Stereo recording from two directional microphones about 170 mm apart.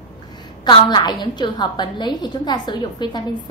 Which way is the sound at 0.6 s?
25° left (ahead or behind).